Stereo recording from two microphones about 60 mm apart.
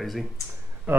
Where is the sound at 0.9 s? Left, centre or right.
Right.